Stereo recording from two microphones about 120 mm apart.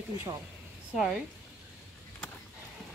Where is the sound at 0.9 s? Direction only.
Centre (ahead or behind).